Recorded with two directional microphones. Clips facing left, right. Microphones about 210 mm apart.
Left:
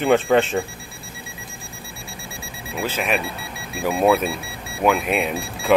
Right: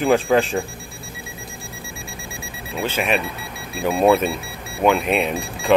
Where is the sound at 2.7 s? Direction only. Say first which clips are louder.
Right 2 dB; 5° left (ahead or behind).